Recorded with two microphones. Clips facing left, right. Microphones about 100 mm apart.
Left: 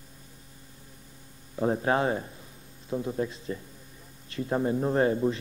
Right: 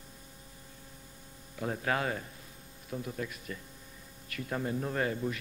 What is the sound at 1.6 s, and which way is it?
A man's voice, 30° left (ahead or behind).